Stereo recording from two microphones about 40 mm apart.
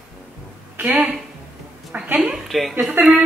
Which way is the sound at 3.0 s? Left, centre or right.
Right.